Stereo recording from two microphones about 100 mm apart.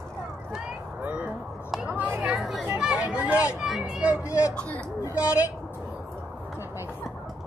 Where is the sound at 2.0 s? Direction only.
15° right (ahead or behind).